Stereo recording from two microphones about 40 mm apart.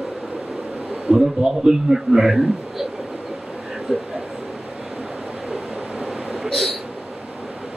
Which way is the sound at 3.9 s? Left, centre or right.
Centre.